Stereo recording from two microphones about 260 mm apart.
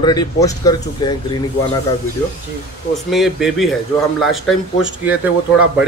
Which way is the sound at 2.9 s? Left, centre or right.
Centre.